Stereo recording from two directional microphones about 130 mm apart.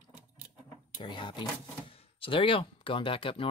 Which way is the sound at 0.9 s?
35° left (ahead or behind).